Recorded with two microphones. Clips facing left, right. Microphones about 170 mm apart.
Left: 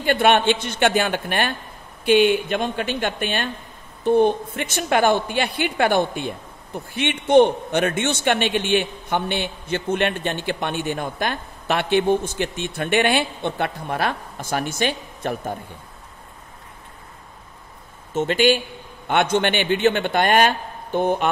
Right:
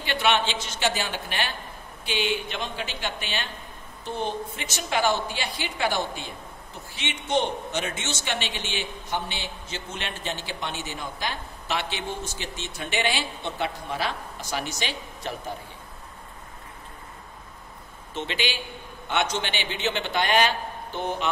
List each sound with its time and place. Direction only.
0.0 s a woman's voice: 50° left (ahead or behind)
18.1 s a man's voice: 50° left (ahead or behind)